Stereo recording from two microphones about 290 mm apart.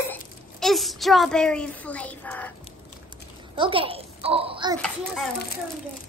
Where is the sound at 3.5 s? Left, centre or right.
Centre.